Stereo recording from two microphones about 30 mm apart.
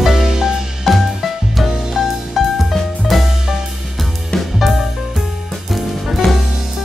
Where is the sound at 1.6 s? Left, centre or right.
Centre.